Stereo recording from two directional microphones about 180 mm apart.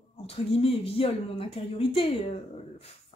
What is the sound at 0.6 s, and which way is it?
Speech, 30° left (ahead or behind).